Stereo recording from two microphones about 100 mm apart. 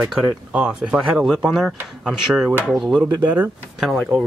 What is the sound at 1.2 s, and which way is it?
Speech, centre (ahead or behind).